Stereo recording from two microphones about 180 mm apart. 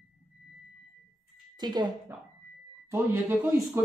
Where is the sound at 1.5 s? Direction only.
25° right (ahead or behind).